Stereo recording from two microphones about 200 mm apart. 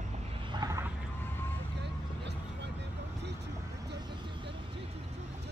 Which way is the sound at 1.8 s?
60° right (ahead or behind).